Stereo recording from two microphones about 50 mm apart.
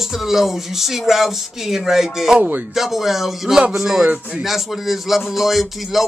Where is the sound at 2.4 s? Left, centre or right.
Right.